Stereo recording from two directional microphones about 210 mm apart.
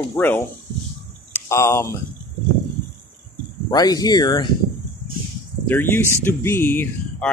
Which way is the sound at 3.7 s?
20° left (ahead or behind).